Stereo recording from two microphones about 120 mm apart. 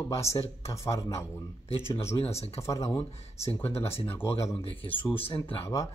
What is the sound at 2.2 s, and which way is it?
Speech, 55° left (ahead or behind).